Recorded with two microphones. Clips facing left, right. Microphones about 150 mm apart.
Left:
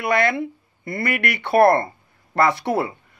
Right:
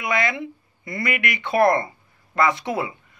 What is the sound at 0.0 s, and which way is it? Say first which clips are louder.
Speech: left 4 dB; 65° left (ahead or behind).